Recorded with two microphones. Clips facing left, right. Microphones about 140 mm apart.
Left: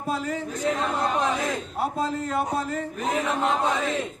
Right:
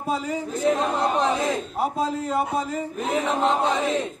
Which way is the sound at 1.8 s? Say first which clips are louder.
Even; centre (ahead or behind).